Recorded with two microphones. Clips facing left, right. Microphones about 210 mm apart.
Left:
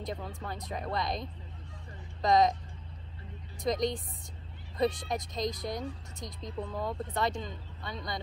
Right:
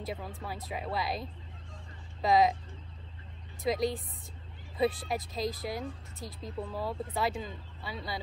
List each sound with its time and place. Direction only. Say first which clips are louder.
0.0 s speech: even; 5° right (ahead or behind)
3.6 s speech: even; 5° right (ahead or behind)